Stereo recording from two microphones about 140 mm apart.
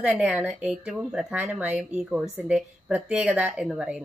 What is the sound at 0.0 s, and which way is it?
A woman's voice, 10° right (ahead or behind).